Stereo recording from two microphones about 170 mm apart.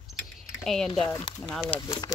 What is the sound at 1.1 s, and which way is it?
Speech, 25° left (ahead or behind).